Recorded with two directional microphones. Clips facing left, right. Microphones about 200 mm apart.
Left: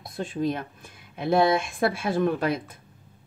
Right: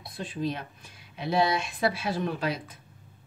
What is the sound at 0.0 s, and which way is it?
Speech, 50° left (ahead or behind).